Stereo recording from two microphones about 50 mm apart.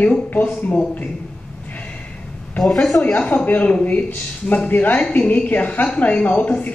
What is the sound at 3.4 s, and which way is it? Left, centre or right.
Speech, left.